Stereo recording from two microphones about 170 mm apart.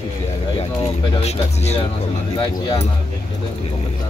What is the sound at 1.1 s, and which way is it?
Speech, 40° left (ahead or behind).